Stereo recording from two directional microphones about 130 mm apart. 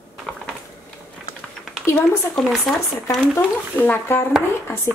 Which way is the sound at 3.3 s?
15° left (ahead or behind).